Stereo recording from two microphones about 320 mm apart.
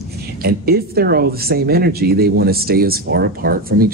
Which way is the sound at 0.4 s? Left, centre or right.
Right.